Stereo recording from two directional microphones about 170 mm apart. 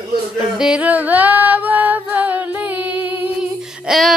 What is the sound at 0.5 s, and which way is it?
Female singing, 5° right (ahead or behind).